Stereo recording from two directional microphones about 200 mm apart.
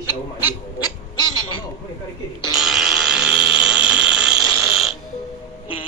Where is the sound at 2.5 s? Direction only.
5° right (ahead or behind).